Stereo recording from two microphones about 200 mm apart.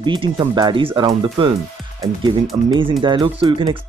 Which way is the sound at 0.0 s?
25° right (ahead or behind).